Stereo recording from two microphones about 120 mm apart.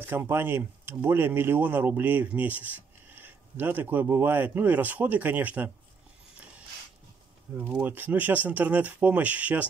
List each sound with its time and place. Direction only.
0.0 s speech: 20° right (ahead or behind)
7.7 s speech: 15° right (ahead or behind)